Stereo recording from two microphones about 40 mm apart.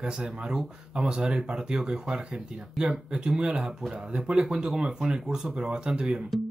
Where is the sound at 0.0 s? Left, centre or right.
Centre.